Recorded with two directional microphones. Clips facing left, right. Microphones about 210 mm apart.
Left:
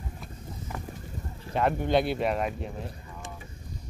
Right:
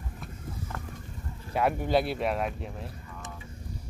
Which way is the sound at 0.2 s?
10° left (ahead or behind).